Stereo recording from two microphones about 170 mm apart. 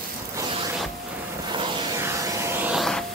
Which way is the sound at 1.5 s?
15° right (ahead or behind).